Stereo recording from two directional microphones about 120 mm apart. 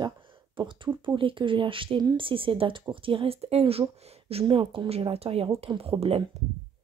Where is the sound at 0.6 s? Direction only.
45° right (ahead or behind).